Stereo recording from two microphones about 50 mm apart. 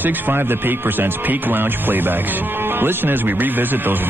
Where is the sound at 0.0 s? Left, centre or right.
Right.